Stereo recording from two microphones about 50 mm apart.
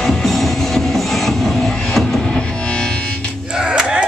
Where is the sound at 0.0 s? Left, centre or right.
Centre.